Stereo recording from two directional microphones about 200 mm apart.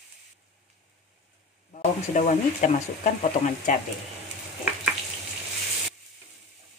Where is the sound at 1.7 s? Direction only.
35° left (ahead or behind).